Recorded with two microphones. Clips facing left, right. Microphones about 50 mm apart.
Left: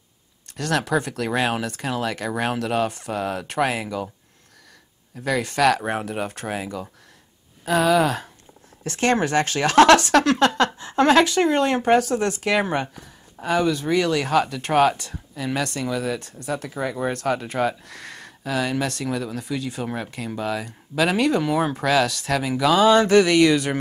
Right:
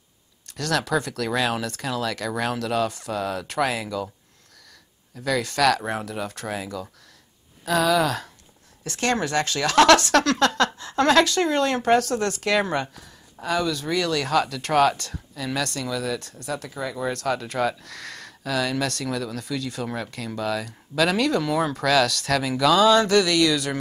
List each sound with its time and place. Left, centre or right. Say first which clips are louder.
0.6 s speech: left 1 dB; centre
5.2 s speech: left 1 dB; left
22.8 s speech: left 3 dB; left